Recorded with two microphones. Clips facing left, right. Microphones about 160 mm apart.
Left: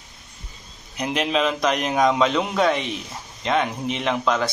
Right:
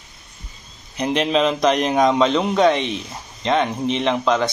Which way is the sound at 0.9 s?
5° left (ahead or behind).